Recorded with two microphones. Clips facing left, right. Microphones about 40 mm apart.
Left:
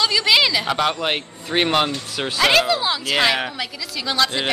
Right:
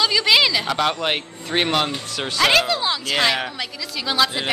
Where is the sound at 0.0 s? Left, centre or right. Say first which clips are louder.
Even; centre.